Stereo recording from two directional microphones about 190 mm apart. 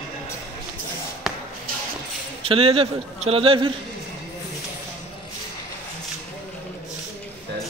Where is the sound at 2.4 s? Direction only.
30° right (ahead or behind).